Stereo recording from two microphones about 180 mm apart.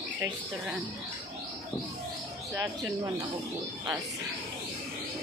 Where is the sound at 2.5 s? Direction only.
20° right (ahead or behind).